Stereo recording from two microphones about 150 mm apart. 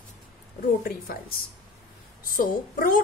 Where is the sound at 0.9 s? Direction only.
85° left.